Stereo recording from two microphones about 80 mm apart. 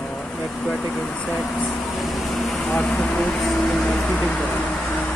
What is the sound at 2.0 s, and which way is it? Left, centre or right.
Vehicle, centre.